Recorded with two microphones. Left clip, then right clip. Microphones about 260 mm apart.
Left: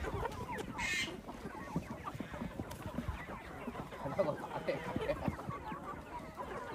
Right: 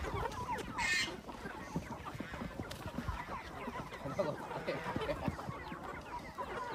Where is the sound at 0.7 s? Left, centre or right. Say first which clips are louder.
Right 3 dB; right.